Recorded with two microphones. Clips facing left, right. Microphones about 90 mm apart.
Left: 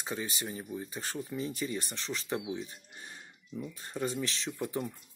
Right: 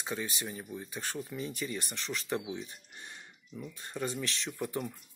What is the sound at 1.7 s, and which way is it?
Speech, centre (ahead or behind).